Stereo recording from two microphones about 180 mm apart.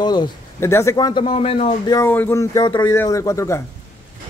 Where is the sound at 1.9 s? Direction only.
10° left (ahead or behind).